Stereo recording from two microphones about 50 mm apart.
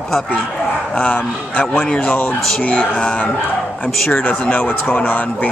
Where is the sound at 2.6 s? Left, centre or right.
Left; by 4.2 s centre.